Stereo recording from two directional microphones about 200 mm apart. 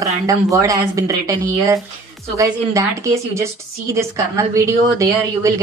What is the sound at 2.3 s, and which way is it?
A woman's voice, 15° right (ahead or behind).